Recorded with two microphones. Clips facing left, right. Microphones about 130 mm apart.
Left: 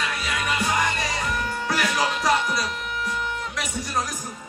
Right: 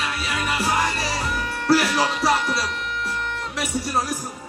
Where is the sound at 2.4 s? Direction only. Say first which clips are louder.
Right 1 dB; centre (ahead or behind).